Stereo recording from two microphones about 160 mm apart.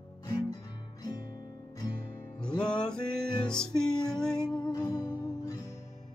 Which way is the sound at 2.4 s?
5° left (ahead or behind).